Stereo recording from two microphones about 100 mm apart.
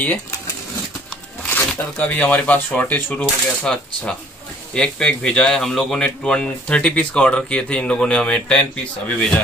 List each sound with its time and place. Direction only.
1.7 s speech: 15° left (ahead or behind)
4.7 s speech: 5° left (ahead or behind)